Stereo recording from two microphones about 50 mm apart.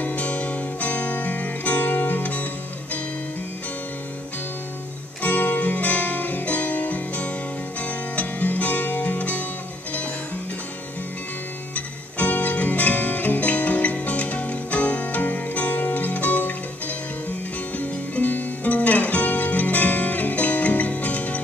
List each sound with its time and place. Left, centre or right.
0.0 s music: left
5.2 s music: left
11.7 s music: left